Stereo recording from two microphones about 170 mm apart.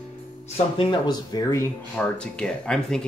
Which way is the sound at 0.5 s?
30° left (ahead or behind).